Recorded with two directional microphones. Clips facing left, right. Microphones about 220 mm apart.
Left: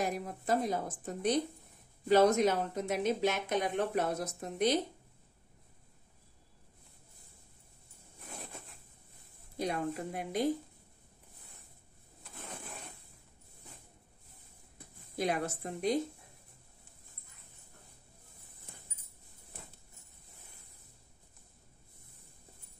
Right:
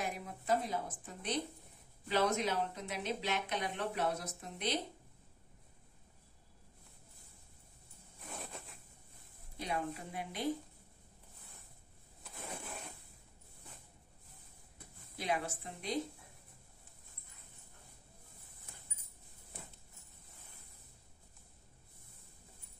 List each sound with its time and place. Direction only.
0.0 s speech: 45° left (ahead or behind)
9.6 s speech: 45° left (ahead or behind)
15.1 s speech: 45° left (ahead or behind)